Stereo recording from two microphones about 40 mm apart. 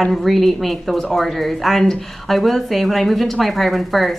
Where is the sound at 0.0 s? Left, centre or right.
Centre.